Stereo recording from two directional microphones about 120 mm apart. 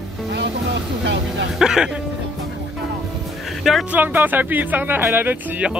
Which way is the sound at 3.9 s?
15° right (ahead or behind).